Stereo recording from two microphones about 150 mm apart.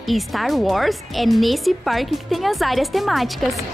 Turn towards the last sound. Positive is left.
turn(degrees=0)  # may be behind; listen again after turning